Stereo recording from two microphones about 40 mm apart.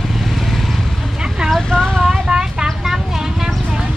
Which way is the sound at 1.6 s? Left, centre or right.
Centre.